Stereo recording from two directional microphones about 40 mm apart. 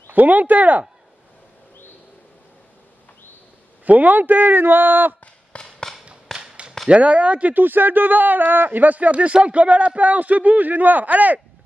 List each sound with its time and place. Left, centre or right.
0.1 s a man's voice: right
3.8 s a man's voice: right
5.5 s a sound: left
6.3 s a sound: centre
6.9 s a man's voice: right
7.5 s a man's voice: right